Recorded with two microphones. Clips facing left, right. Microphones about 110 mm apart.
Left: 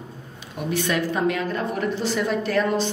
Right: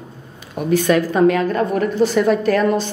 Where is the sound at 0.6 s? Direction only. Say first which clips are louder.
Right 8 dB; 45° right (ahead or behind).